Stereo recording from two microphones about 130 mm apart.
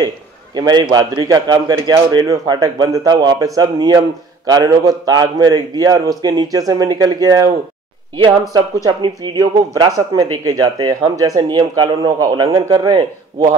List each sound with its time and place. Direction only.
0.6 s speech: 30° right (ahead or behind)
8.8 s speech: 35° right (ahead or behind)